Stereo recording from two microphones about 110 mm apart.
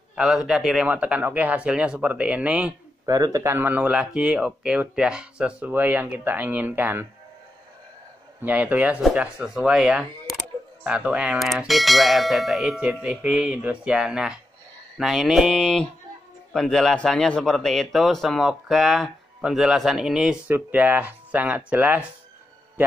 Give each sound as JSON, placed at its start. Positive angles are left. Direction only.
{"t": 0.1, "sound": "a man's voice", "side_deg": -5}
{"t": 3.1, "sound": "a man's voice", "side_deg": -35}
{"t": 3.5, "sound": "speech", "side_deg": -15}
{"t": 8.4, "sound": "a man's voice", "side_deg": -15}
{"t": 20.4, "sound": "speech", "side_deg": -15}